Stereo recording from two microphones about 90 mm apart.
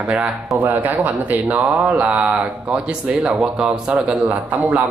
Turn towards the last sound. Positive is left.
turn(degrees=-15)  # may be behind; listen again after turning